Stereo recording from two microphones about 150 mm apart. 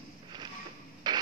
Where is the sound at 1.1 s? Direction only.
30° right (ahead or behind).